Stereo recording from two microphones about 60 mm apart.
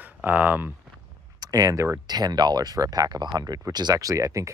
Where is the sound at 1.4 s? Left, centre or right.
Right.